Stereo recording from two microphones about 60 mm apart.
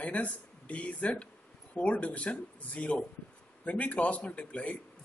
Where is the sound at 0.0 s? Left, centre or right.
Left.